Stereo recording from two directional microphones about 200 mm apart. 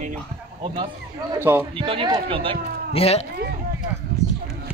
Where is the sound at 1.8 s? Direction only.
25° right (ahead or behind).